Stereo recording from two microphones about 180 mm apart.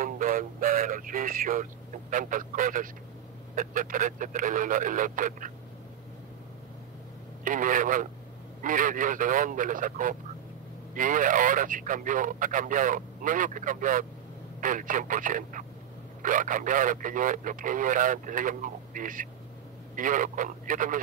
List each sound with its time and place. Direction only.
0.0 s a sound: 50° right (ahead or behind)
3.5 s speech: 50° right (ahead or behind)
7.4 s speech: 45° right (ahead or behind)